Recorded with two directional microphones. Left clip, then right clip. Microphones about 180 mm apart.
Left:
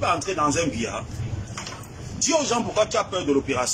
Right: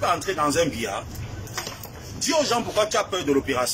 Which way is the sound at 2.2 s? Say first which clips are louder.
Even; 15° left (ahead or behind).